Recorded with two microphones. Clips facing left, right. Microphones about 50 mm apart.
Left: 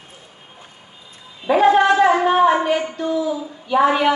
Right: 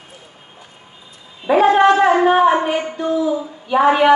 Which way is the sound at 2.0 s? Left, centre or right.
Centre.